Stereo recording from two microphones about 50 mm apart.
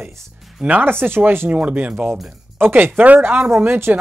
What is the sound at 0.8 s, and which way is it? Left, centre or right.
Speech, right.